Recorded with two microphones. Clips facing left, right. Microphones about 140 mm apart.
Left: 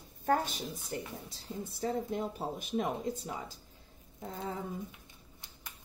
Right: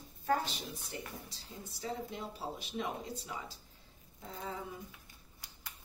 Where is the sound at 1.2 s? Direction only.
55° left (ahead or behind).